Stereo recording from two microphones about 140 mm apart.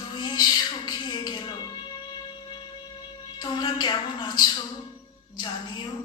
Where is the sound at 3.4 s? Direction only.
30° left (ahead or behind).